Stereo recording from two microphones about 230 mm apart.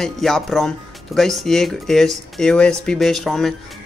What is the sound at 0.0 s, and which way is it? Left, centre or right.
Speech, centre.